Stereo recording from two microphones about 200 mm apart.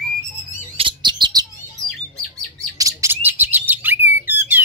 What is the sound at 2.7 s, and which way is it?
Bird, 15° right (ahead or behind).